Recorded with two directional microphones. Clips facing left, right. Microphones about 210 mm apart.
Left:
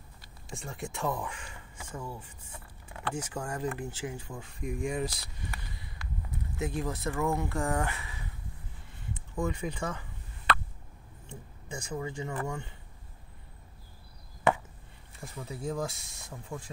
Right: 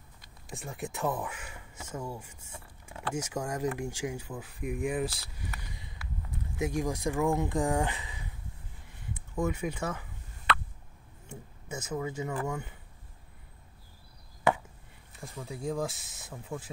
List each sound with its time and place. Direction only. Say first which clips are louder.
0.5 s speech: right 1 dB; centre (ahead or behind)
6.0 s a sound: left 1 dB; 5° right (ahead or behind)
6.6 s speech: right 3 dB; 10° right (ahead or behind)
11.2 s speech: right 2 dB; 5° right (ahead or behind)
15.1 s speech: even; centre (ahead or behind)